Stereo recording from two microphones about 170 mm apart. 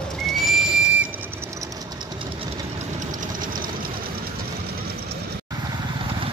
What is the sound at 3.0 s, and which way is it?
Vehicle, 50° right (ahead or behind).